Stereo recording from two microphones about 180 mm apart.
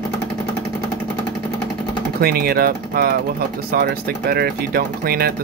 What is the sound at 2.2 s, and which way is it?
Speech, 60° right (ahead or behind).